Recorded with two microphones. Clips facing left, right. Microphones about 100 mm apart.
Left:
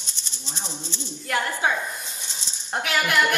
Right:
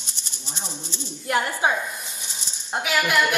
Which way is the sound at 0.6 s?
15° right (ahead or behind).